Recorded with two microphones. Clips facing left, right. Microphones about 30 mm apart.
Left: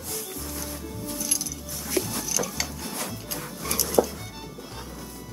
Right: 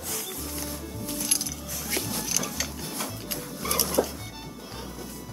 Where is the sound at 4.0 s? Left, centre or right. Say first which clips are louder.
Left 5 dB; centre.